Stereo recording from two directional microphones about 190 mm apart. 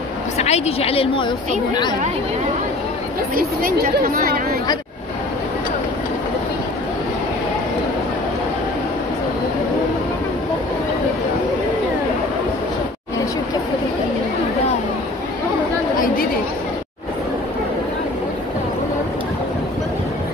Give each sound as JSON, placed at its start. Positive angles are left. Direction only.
{"t": 0.4, "sound": "speech", "side_deg": 35}
{"t": 3.3, "sound": "speech", "side_deg": -50}